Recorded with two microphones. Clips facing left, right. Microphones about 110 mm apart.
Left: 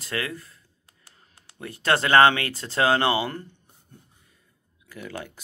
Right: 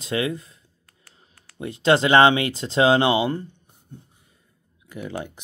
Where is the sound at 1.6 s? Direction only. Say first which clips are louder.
Right 5 dB; 20° right (ahead or behind).